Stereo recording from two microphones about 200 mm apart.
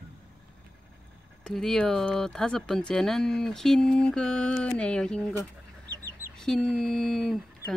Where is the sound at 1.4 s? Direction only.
Centre (ahead or behind).